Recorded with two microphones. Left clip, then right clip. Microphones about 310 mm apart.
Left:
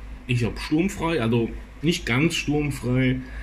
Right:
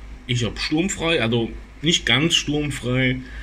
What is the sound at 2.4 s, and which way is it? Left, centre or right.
Speech, right.